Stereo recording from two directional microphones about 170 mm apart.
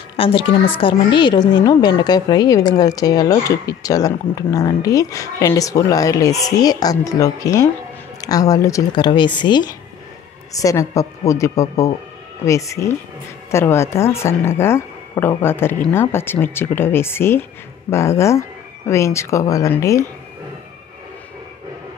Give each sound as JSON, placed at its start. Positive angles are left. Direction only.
{"t": 0.2, "sound": "a woman's voice", "side_deg": 30}